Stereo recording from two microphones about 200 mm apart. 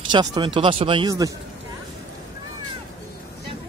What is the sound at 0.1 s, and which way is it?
Speech, 20° right (ahead or behind).